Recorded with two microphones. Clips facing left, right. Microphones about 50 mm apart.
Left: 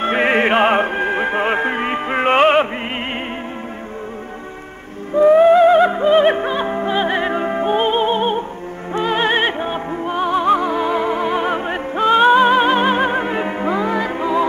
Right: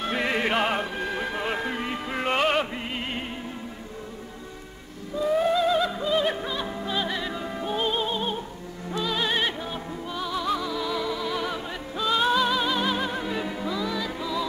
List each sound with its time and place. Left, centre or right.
0.0 s music: left
5.1 s music: left